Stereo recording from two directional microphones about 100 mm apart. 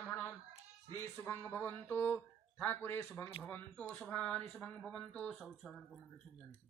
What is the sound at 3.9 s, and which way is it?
Speech, 10° left (ahead or behind).